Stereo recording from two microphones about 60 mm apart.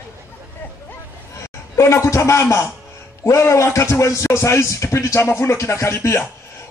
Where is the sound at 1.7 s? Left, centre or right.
Left.